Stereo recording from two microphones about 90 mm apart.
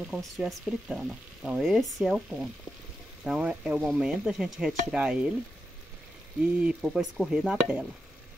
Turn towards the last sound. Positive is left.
turn(degrees=-10)  # may be behind; listen again after turning